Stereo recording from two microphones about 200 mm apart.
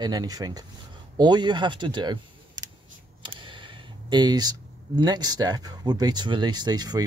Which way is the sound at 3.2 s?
25° right (ahead or behind).